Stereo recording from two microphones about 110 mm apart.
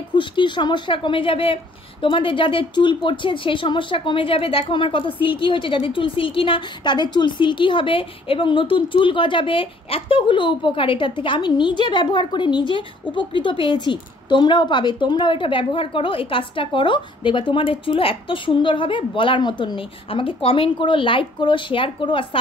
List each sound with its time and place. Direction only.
0.1 s speech: 45° left (ahead or behind)